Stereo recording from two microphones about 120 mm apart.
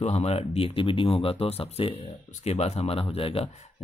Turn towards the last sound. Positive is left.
turn(degrees=50)  # may be behind; listen again after turning